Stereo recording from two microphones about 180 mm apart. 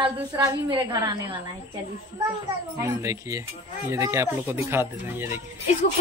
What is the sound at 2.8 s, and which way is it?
Speech, 15° right (ahead or behind).